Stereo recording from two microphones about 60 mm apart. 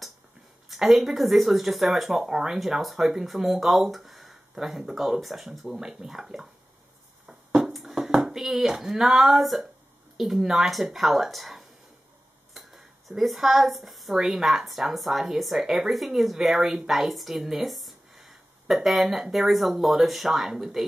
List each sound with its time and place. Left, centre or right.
0.7 s a woman's voice: centre
7.2 s a sound: centre
8.0 s a woman's voice: centre